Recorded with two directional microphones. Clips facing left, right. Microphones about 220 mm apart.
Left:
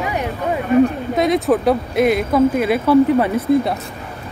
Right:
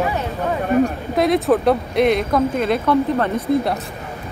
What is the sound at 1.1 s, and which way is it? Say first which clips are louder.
Speech: right 1 dB; centre (ahead or behind).